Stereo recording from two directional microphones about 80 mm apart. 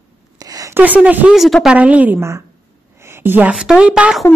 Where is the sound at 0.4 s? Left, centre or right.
Right.